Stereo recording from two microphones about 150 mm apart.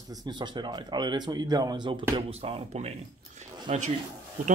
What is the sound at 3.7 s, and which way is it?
Rub, 45° right (ahead or behind).